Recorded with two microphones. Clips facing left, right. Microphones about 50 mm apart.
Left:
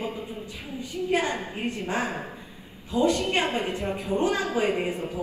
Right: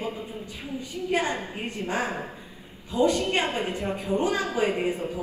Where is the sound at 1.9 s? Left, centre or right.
Left.